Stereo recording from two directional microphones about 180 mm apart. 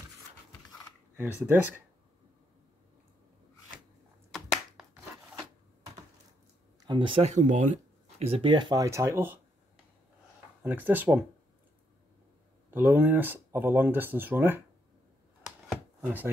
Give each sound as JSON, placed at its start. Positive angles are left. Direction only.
{"t": 1.1, "sound": "speech", "side_deg": -10}
{"t": 4.3, "sound": "a sound", "side_deg": 0}
{"t": 6.8, "sound": "speech", "side_deg": -25}
{"t": 10.6, "sound": "speech", "side_deg": -10}
{"t": 12.7, "sound": "speech", "side_deg": -10}
{"t": 15.7, "sound": "chopping", "side_deg": -10}